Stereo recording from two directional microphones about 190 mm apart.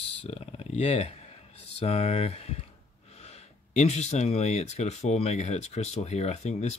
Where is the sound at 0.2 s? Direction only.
30° left (ahead or behind).